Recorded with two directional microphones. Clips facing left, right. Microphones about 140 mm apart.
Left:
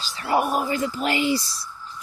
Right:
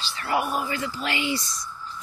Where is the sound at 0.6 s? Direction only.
40° left (ahead or behind).